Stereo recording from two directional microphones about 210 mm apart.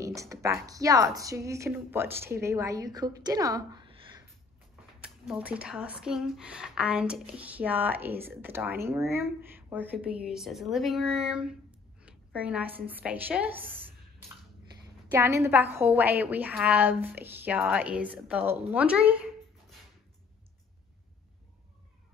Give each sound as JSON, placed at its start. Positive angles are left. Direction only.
{"t": 0.0, "sound": "a woman's voice", "side_deg": -15}
{"t": 5.0, "sound": "a woman's voice", "side_deg": -5}
{"t": 13.7, "sound": "a sound", "side_deg": -25}
{"t": 15.0, "sound": "a woman's voice", "side_deg": -10}